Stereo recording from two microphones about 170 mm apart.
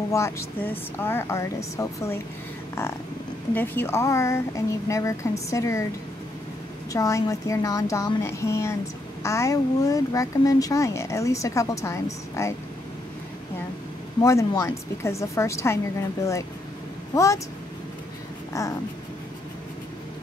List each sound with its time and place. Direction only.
0.1 s speech: 15° left (ahead or behind)
3.5 s speech: 10° left (ahead or behind)
6.9 s speech: 20° left (ahead or behind)
14.2 s speech: 20° left (ahead or behind)
17.1 s speech: 20° left (ahead or behind)
18.5 s speech: 20° left (ahead or behind)